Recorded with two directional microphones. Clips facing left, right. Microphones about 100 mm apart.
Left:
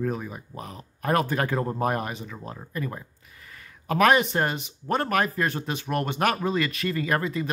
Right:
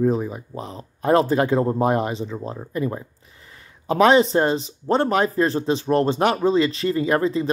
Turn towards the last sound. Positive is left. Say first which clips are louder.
# right 6 dB
turn(degrees=-30)  # may be behind; listen again after turning